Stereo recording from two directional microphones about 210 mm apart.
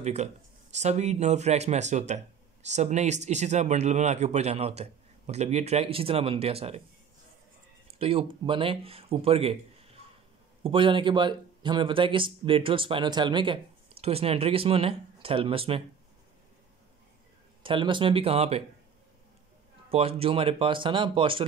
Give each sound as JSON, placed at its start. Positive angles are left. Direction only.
{"t": 0.0, "sound": "speech", "side_deg": -30}
{"t": 8.0, "sound": "speech", "side_deg": -25}
{"t": 10.6, "sound": "speech", "side_deg": -25}
{"t": 17.6, "sound": "speech", "side_deg": -25}
{"t": 19.9, "sound": "speech", "side_deg": -30}